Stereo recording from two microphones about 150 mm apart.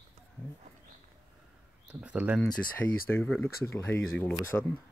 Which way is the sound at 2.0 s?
10° right (ahead or behind).